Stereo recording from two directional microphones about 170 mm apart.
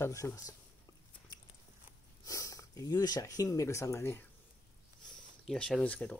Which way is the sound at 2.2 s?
20° left (ahead or behind).